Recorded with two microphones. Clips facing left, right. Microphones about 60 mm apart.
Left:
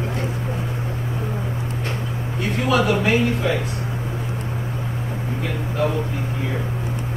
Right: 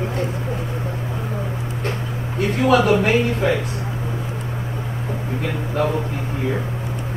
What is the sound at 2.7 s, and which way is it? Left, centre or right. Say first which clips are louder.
Speech: right 3 dB; right.